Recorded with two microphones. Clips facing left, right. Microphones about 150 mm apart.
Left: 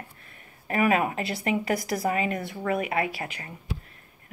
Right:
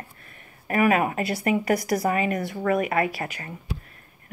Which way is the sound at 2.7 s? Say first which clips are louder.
Right 3 dB; 50° right (ahead or behind).